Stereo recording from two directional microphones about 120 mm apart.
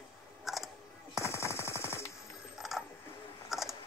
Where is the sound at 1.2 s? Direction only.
25° left (ahead or behind).